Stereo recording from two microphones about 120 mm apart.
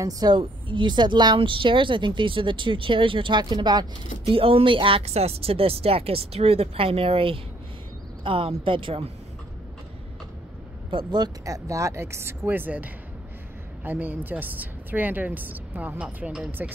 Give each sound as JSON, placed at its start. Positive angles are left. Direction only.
{"t": 0.0, "sound": "speech", "side_deg": -35}
{"t": 4.3, "sound": "speech", "side_deg": -50}
{"t": 10.9, "sound": "a woman's voice", "side_deg": -40}